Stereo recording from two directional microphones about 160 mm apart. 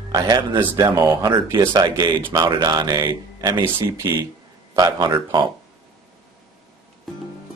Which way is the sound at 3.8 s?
15° right (ahead or behind).